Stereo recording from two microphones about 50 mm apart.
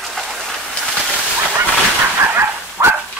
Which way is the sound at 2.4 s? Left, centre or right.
Right.